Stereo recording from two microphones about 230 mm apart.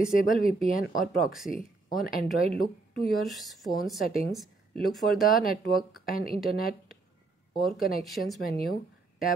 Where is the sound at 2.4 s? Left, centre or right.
Left.